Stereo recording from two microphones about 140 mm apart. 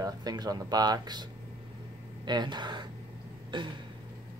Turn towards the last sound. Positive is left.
turn(degrees=-35)  # may be behind; listen again after turning